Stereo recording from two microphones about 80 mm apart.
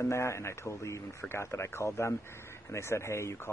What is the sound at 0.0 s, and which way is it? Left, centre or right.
A man's voice, left.